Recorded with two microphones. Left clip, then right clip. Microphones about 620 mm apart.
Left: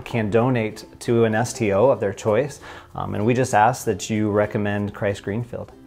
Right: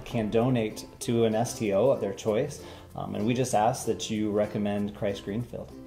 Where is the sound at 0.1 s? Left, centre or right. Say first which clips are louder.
Left 6 dB; left.